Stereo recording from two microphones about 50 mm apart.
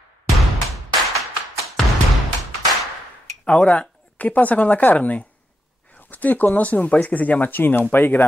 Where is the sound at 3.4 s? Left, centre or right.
Left.